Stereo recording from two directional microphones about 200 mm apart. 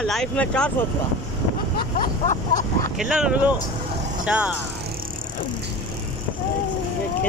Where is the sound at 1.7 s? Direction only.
40° left (ahead or behind).